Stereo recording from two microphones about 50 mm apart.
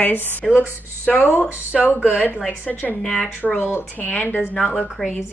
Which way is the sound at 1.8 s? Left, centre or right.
Right.